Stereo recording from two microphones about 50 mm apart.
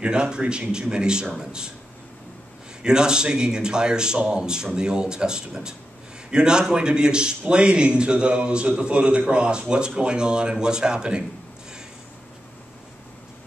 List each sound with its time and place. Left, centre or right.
0.0 s speech: centre
2.8 s a man's voice: centre